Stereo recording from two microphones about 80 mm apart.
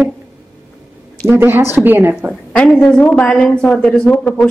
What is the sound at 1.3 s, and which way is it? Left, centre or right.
Speech, right.